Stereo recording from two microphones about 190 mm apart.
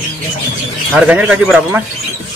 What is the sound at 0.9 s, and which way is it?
Speech, 5° right (ahead or behind).